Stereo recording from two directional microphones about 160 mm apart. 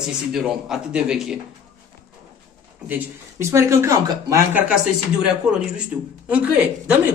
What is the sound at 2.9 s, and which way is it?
A man's voice, 15° right (ahead or behind).